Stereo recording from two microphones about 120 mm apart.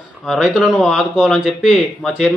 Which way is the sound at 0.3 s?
Centre (ahead or behind).